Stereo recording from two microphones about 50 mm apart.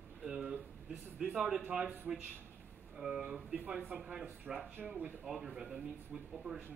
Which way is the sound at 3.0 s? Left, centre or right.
Centre.